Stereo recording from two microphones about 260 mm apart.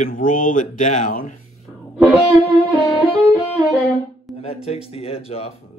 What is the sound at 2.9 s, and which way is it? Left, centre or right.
Music, centre.